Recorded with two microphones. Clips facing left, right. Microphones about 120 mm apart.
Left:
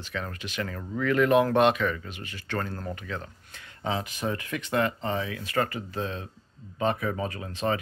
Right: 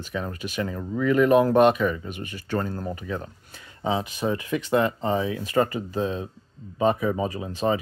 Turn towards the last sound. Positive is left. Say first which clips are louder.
# right 4 dB
turn(degrees=-20)  # may be behind; listen again after turning